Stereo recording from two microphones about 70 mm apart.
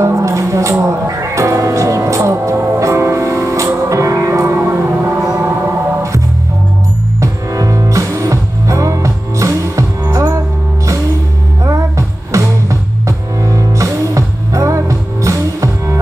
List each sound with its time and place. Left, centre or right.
0.0 s a sound: right
0.8 s music: right
7.2 s music: right
12.3 s music: right